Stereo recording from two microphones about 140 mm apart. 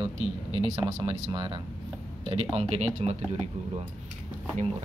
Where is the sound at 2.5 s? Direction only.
45° right (ahead or behind).